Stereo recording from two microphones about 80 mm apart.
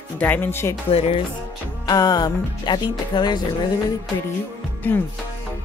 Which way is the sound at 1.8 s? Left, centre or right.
Left.